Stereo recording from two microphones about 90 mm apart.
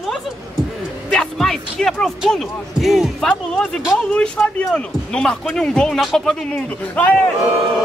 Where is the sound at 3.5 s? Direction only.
10° left (ahead or behind).